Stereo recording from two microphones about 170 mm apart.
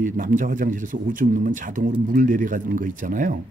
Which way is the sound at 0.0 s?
50° right (ahead or behind).